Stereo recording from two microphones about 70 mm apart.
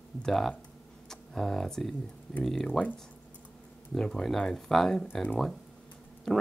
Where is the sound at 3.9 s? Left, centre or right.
Centre.